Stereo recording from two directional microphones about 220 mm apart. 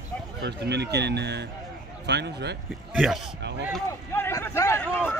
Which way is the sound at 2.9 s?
Centre (ahead or behind).